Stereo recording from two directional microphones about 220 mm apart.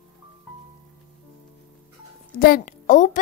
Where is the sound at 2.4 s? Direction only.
40° left (ahead or behind).